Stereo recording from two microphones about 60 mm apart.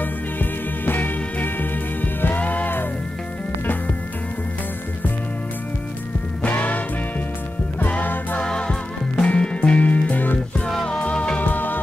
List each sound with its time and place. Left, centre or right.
0.0 s music: left
6.5 s music: left
7.8 s music: left
8.4 s music: centre
10.7 s music: centre
11.0 s music: left